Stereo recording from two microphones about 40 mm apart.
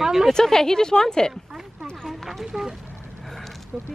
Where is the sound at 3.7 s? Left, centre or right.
Centre.